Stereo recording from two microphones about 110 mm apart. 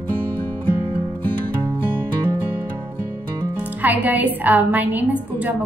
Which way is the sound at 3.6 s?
15° right (ahead or behind).